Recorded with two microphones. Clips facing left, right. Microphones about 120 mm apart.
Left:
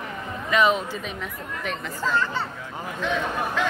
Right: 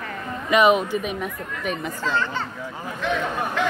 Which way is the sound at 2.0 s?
10° left (ahead or behind).